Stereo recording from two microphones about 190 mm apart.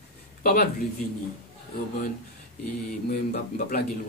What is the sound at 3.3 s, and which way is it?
Speech, 50° left (ahead or behind).